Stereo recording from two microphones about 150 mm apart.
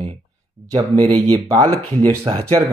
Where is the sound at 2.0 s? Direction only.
35° right (ahead or behind).